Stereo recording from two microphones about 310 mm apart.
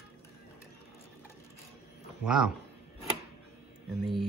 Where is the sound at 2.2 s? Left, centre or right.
Centre.